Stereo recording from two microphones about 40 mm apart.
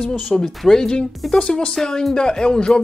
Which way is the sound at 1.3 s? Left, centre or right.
Left.